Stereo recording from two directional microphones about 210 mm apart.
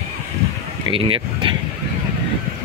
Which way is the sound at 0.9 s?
25° right (ahead or behind).